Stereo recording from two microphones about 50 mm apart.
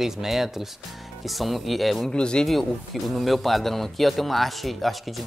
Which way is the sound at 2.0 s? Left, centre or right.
Centre.